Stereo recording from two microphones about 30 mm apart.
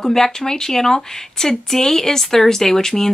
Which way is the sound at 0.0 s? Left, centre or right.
Centre.